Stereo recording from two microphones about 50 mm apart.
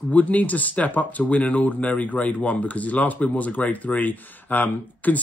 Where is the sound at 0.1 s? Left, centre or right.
Left.